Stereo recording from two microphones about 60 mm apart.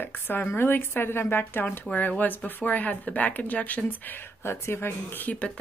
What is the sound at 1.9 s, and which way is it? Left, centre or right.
Speech, left.